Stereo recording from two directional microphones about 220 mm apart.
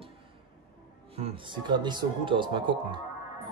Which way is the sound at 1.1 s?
25° right (ahead or behind).